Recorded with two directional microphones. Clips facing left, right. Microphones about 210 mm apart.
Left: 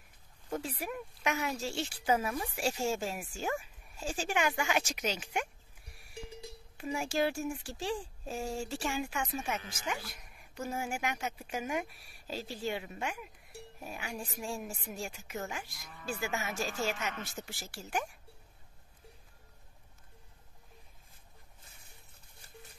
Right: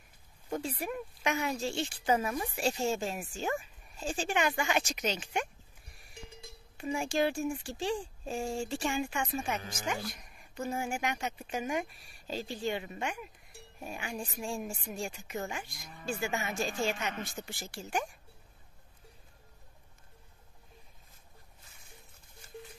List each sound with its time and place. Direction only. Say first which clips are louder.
0.6 s speech: right 3 dB; 5° left (ahead or behind)
6.8 s speech: right 2 dB; 5° left (ahead or behind)
9.6 s speech: right 4 dB; 40° right (ahead or behind)
10.1 s speech: right 2 dB; 5° left (ahead or behind)